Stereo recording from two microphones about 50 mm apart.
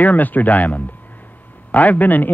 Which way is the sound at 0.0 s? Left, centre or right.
Left.